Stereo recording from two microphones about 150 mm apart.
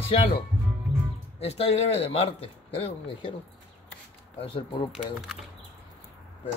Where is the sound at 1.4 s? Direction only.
40° left (ahead or behind).